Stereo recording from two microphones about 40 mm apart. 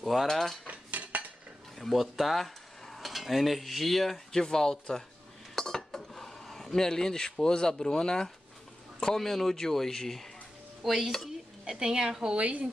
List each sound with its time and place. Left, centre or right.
0.0 s cutlery: centre
0.3 s speech: centre
0.7 s cutlery: right
1.8 s speech: centre
2.3 s cutlery: centre
9.0 s speech: centre
11.8 s a woman's voice: centre
12.4 s a woman's voice: right